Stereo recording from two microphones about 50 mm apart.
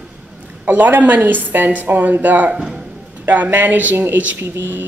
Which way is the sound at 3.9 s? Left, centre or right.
Right.